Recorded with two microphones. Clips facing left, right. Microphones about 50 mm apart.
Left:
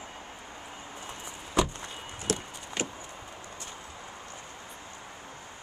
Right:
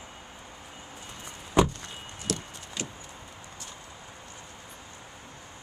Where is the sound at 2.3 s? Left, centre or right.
Left.